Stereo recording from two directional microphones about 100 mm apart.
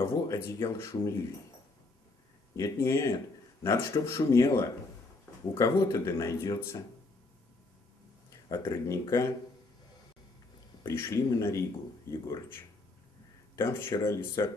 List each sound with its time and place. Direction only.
0.1 s speech: 30° left (ahead or behind)
2.5 s speech: 30° left (ahead or behind)
8.3 s speech: 35° left (ahead or behind)
10.8 s speech: 25° left (ahead or behind)